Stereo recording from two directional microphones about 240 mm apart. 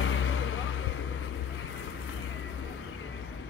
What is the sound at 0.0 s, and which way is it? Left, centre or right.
Vehicle, left.